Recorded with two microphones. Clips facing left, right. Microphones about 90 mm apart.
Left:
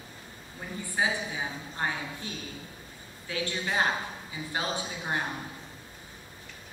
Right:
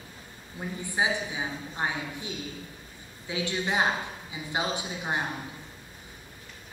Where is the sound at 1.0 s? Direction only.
20° right (ahead or behind).